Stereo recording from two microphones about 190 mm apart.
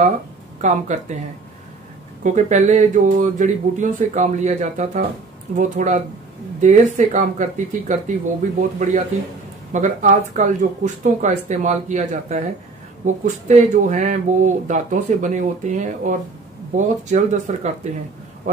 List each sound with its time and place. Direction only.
0.6 s speech: 40° right (ahead or behind)
2.2 s speech: 40° right (ahead or behind)